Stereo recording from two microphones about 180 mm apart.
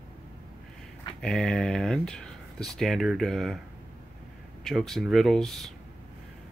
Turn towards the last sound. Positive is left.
turn(degrees=0)  # may be behind; listen again after turning